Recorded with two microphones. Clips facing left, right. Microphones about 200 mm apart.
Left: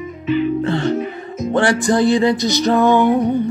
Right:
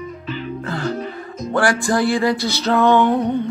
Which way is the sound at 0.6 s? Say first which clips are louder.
Left 6 dB; 25° left (ahead or behind).